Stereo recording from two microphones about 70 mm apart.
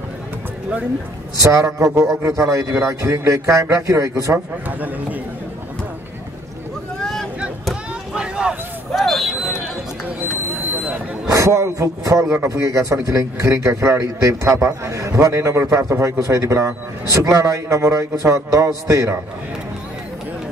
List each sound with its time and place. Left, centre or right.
1.4 s a man's voice: right
4.6 s a man's voice: right
7.0 s vehicle: centre
8.1 s a sound: centre
9.0 s vehicle: centre
10.6 s a sound: right
11.2 s a man's voice: right